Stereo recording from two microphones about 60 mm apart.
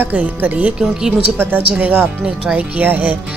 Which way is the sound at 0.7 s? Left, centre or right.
Centre.